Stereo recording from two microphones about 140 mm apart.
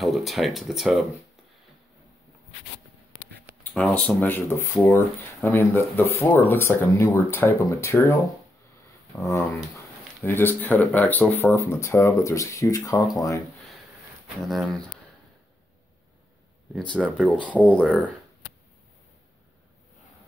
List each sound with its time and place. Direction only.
0.0 s speech: centre (ahead or behind)
3.7 s speech: 5° left (ahead or behind)
4.1 s speech: 15° left (ahead or behind)
10.2 s speech: 15° left (ahead or behind)
14.4 s speech: centre (ahead or behind)
16.7 s speech: 5° left (ahead or behind)